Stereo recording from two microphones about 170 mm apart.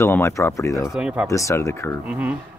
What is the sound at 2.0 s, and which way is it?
Speech, 10° right (ahead or behind).